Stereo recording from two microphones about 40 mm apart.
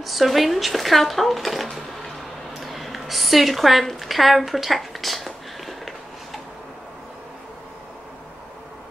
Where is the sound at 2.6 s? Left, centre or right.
Centre.